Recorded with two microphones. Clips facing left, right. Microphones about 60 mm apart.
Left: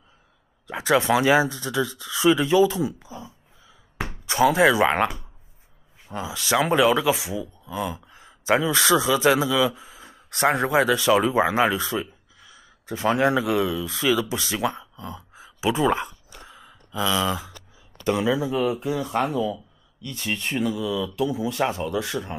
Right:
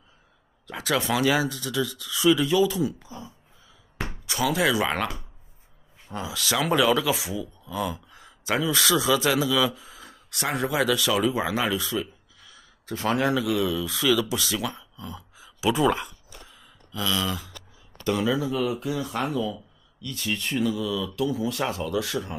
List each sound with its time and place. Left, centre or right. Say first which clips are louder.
0.7 s speech: left 5 dB; left
4.3 s speech: left 6 dB; left
12.4 s speech: left 2 dB; centre
14.3 s a sound: left 3 dB; left
18.0 s speech: left 2 dB; left